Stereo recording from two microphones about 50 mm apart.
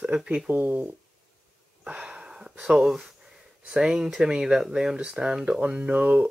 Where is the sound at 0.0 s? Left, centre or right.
Centre.